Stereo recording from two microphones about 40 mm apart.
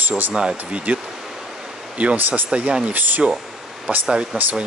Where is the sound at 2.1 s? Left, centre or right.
Right.